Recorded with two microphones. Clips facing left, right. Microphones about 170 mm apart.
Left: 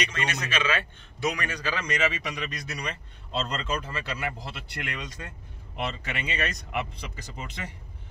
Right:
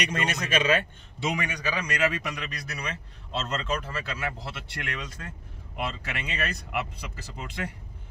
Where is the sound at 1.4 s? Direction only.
15° right (ahead or behind).